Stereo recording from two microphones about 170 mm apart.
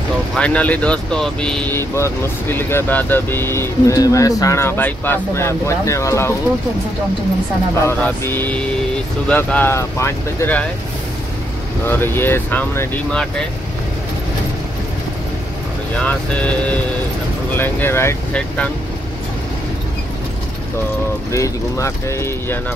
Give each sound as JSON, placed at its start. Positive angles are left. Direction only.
{"t": 0.4, "sound": "speech", "side_deg": 5}
{"t": 7.8, "sound": "speech", "side_deg": 15}
{"t": 11.8, "sound": "speech", "side_deg": 15}
{"t": 16.0, "sound": "speech", "side_deg": 5}
{"t": 21.3, "sound": "speech", "side_deg": 15}